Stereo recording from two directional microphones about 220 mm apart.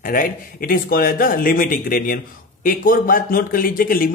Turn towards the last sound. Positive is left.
turn(degrees=40)  # may be behind; listen again after turning